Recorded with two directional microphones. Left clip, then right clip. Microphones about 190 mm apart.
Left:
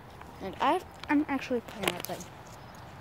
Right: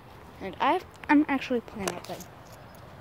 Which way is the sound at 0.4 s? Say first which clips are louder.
Right 2 dB; 10° right (ahead or behind).